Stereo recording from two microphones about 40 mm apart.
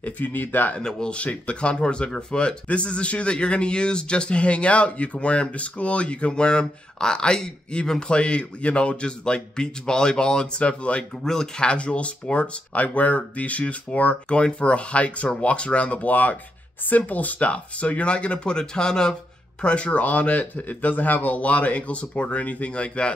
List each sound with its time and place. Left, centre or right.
0.0 s a man's voice: left
0.7 s a man's voice: centre
1.1 s a man's voice: left
11.2 s speech: centre
11.6 s a man's voice: left
19.6 s a man's voice: left